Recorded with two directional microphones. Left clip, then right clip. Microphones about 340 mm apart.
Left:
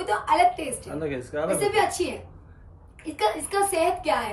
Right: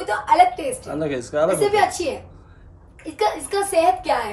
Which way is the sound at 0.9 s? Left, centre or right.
Centre.